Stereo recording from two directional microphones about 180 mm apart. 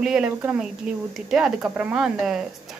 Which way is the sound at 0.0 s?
5° right (ahead or behind).